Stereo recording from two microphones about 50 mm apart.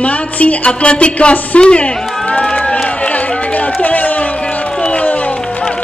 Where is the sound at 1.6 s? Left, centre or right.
Left.